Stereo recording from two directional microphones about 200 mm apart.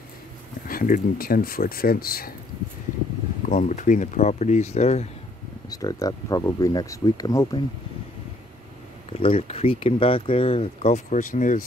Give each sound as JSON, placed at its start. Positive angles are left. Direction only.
{"t": 0.7, "sound": "speech", "side_deg": 45}
{"t": 3.4, "sound": "speech", "side_deg": 40}
{"t": 5.7, "sound": "speech", "side_deg": 20}
{"t": 9.2, "sound": "speech", "side_deg": 30}